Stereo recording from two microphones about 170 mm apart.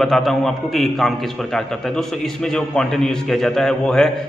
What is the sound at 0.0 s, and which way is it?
A man's voice, centre (ahead or behind).